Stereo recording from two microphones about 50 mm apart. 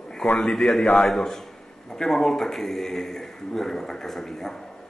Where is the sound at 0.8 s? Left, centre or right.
Left.